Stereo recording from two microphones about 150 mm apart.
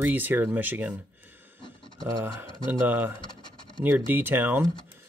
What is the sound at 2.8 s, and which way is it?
Speech, 10° right (ahead or behind).